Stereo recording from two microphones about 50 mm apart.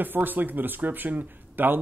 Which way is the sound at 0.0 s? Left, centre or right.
Right.